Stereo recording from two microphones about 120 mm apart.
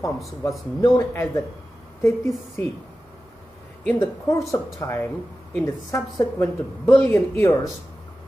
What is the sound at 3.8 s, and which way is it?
Speech, 20° left (ahead or behind).